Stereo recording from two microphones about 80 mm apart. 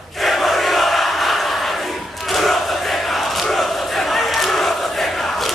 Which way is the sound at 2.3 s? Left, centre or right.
Centre.